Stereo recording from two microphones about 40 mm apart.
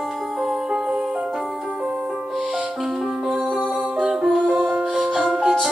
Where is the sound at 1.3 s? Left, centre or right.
Centre.